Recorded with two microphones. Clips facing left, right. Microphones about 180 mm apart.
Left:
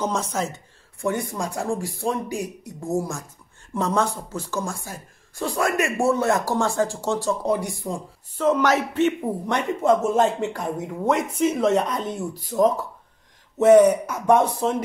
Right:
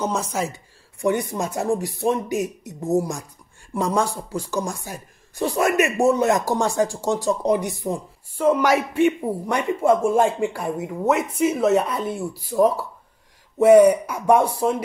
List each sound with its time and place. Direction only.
0.0 s speech: 10° right (ahead or behind)